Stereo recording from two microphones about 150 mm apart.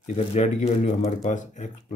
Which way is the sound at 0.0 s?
45° left (ahead or behind).